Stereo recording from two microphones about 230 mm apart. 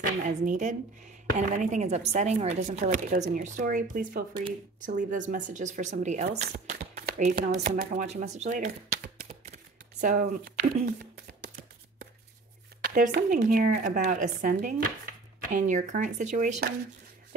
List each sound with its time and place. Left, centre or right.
0.0 s speech: right
6.2 s speech: right
12.8 s speech: right